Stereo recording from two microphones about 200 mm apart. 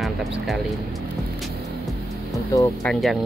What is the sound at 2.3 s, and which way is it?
Speech, 15° left (ahead or behind).